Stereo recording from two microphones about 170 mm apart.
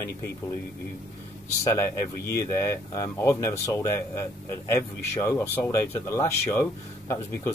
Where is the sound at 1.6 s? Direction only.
20° left (ahead or behind).